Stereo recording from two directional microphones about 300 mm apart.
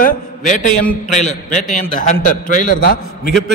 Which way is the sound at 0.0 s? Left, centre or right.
Left.